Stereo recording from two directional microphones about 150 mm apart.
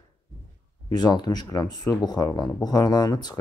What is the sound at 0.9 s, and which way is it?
Speech, 25° left (ahead or behind).